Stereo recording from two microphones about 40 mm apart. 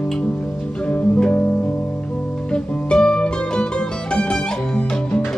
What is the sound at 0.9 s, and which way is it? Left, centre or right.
Music, left.